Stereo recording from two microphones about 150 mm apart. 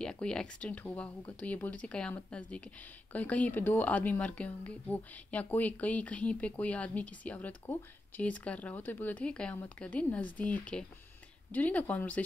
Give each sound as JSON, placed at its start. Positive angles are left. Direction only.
{"t": 0.0, "sound": "speech", "side_deg": 5}